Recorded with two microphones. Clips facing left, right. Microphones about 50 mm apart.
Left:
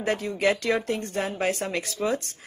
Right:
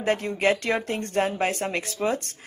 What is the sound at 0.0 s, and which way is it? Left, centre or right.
Speech, right.